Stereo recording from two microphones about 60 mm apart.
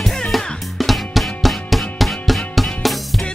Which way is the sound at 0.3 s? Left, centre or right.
Centre.